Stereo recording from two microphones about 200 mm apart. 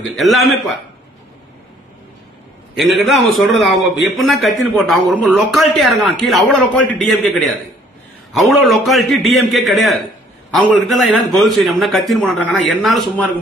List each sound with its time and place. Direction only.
0.0 s a man's voice: centre (ahead or behind)
2.8 s a man's voice: centre (ahead or behind)